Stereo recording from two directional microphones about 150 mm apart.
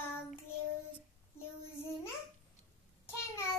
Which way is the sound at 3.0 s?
15° left (ahead or behind).